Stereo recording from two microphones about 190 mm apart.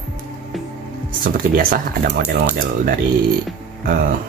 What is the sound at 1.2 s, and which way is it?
Speech, 45° right (ahead or behind).